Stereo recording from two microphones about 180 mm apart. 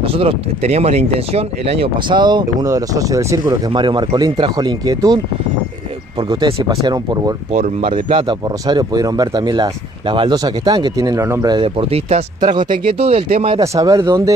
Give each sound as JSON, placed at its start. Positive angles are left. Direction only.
{"t": 0.0, "sound": "speech", "side_deg": -30}
{"t": 7.5, "sound": "speech", "side_deg": -45}
{"t": 7.9, "sound": "speech", "side_deg": -30}
{"t": 13.6, "sound": "speech", "side_deg": -20}